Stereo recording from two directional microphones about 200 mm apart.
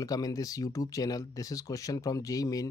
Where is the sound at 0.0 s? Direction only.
20° left (ahead or behind).